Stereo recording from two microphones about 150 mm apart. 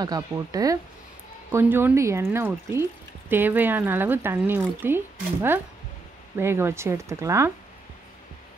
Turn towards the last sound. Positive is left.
turn(degrees=-20)  # may be behind; listen again after turning